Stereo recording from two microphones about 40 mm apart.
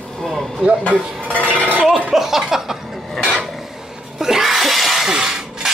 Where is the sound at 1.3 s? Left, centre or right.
Right.